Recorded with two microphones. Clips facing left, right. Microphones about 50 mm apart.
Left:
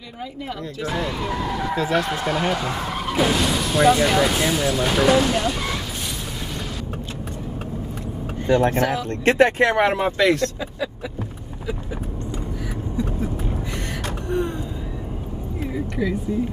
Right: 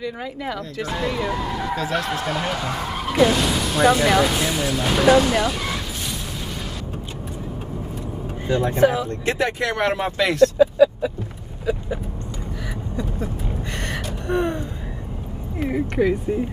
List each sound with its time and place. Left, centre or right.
0.8 s speech: centre
8.5 s speech: left
9.8 s speech: centre
14.3 s gasp: right
15.6 s speech: right